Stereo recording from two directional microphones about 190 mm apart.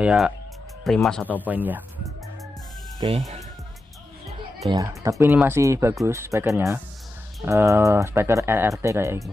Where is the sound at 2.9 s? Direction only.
30° right (ahead or behind).